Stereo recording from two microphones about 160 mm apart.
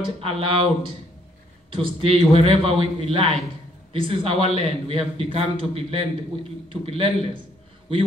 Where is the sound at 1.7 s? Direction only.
35° right (ahead or behind).